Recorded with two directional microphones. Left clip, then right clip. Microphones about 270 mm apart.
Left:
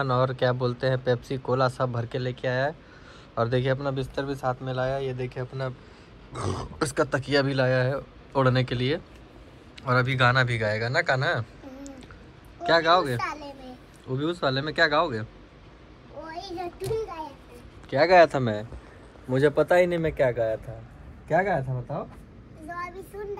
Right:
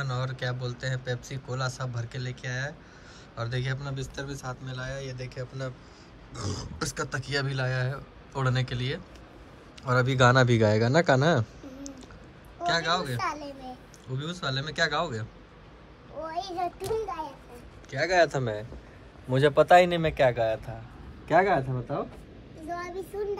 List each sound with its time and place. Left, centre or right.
0.0 s a man's voice: centre; by 11.9 s right
12.6 s speech: centre
16.3 s child singing: centre
18.4 s a man's voice: left
19.2 s speech: centre
22.7 s child singing: centre